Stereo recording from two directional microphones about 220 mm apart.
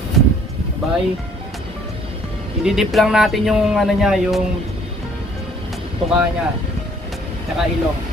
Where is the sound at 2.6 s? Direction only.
Centre (ahead or behind).